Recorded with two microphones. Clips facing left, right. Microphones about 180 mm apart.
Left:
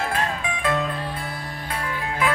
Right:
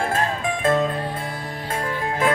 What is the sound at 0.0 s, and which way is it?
Music, 45° right (ahead or behind).